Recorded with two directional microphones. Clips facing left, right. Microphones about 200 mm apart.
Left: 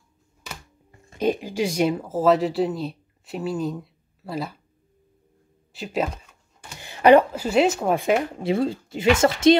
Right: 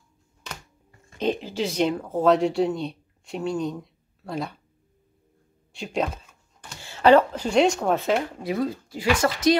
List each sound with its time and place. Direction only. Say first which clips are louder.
1.1 s speech: left 2 dB; 10° left (ahead or behind)
5.7 s speech: left 1 dB; 5° left (ahead or behind)
8.4 s speech: left 3 dB; 25° left (ahead or behind)